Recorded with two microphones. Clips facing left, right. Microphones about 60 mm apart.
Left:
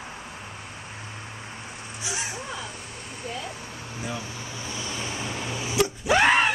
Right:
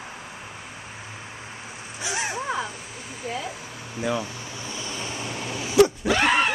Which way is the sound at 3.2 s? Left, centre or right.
Centre.